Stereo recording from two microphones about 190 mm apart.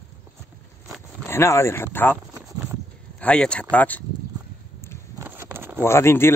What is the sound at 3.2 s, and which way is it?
Speech, 5° left (ahead or behind).